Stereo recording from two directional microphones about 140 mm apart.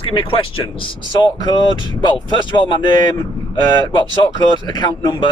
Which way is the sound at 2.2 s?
35° left (ahead or behind).